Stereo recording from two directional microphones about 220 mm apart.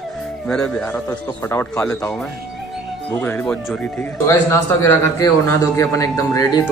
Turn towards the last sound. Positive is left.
turn(degrees=15)  # may be behind; listen again after turning